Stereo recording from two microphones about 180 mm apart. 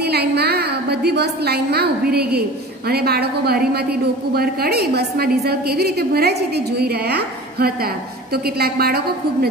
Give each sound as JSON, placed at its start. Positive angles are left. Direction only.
{"t": 0.1, "sound": "a woman's voice", "side_deg": -65}